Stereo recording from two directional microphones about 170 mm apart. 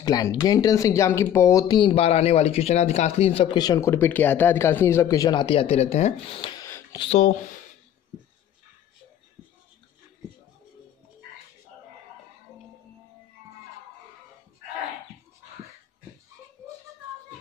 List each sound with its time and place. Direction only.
0.0 s speech: 20° left (ahead or behind); by 6.5 s 40° left (ahead or behind)
6.5 s a sound: 20° left (ahead or behind)
7.0 s speech: 40° left (ahead or behind)